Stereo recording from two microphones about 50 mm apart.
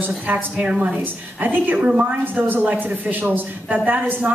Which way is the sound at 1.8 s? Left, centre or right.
Centre.